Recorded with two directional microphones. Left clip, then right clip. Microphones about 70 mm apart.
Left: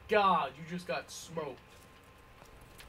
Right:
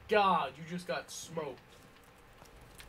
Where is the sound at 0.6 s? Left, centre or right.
Centre.